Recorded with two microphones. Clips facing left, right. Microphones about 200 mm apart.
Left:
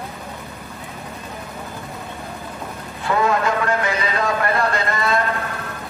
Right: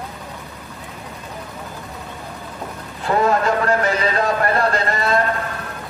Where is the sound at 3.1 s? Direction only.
40° right (ahead or behind).